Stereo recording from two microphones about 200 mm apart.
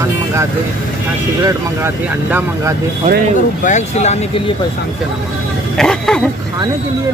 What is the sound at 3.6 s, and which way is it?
Speech, 35° left (ahead or behind).